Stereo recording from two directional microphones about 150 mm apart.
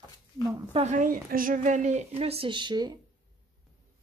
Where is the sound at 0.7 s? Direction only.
55° right (ahead or behind); by 3.0 s 30° right (ahead or behind).